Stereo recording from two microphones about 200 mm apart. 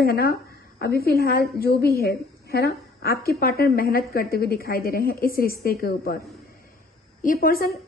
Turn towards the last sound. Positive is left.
turn(degrees=45)  # may be behind; listen again after turning